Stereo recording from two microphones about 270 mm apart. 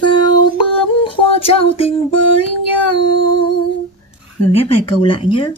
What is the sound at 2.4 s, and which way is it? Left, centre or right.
Child singing, left.